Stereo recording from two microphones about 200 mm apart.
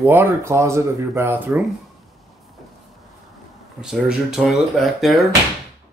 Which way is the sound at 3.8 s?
5° right (ahead or behind).